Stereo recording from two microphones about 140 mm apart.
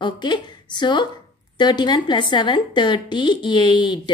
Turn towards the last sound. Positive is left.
turn(degrees=35)  # may be behind; listen again after turning